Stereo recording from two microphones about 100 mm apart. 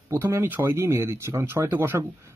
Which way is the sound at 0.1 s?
25° right (ahead or behind).